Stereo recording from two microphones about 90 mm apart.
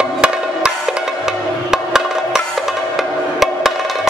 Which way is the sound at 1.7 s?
5° right (ahead or behind).